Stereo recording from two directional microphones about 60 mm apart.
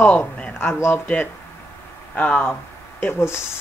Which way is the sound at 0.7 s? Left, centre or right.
Left.